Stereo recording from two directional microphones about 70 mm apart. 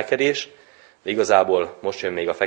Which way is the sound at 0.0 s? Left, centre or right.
Centre.